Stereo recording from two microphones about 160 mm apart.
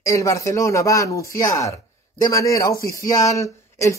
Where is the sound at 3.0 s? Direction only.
20° left (ahead or behind).